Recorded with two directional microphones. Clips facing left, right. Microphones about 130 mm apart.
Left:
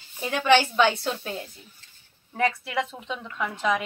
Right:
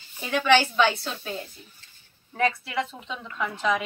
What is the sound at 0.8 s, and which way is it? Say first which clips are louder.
Speech: left 2 dB; 15° left (ahead or behind).